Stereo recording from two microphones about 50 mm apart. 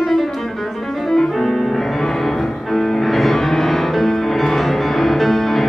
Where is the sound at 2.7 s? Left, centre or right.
Centre.